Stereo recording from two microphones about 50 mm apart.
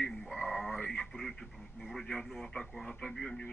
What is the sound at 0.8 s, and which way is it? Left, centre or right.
Speech, left.